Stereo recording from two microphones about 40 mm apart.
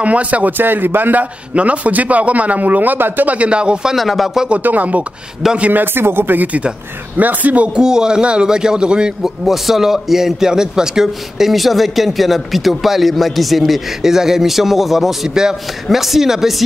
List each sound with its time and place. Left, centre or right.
0.0 s a man's voice: right
0.5 s a man's voice: right
1.5 s a man's voice: right
3.3 s a man's voice: right
3.9 s a man's voice: centre
4.6 s a man's voice: right
5.9 s a man's voice: right
7.7 s a man's voice: centre
9.2 s a man's voice: centre
15.2 s speech: centre